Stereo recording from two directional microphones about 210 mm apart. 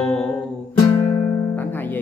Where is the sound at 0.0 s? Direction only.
5° left (ahead or behind).